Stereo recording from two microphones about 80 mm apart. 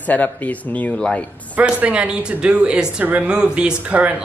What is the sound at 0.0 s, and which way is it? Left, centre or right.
Speech, left.